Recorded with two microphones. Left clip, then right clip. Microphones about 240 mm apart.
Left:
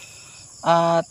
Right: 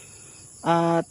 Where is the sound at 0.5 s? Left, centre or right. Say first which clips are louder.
Left 4 dB; centre.